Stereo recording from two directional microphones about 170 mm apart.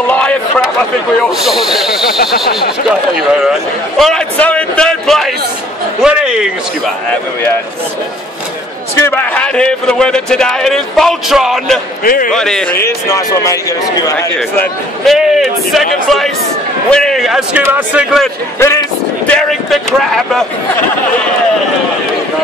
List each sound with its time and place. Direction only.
0.0 s a sound: 10° left (ahead or behind)
1.4 s a man's voice: centre (ahead or behind)
2.1 s a sound: 70° left (ahead or behind)
2.9 s a man's voice: 5° right (ahead or behind)
9.0 s a man's voice: 10° left (ahead or behind)
12.0 s speech: 55° left (ahead or behind)
12.3 s a man's voice: 5° left (ahead or behind)
12.8 s speech: 20° left (ahead or behind)
15.0 s a man's voice: centre (ahead or behind)
16.9 s a man's voice: 5° left (ahead or behind)
18.6 s speech: 15° left (ahead or behind)
19.3 s a man's voice: centre (ahead or behind)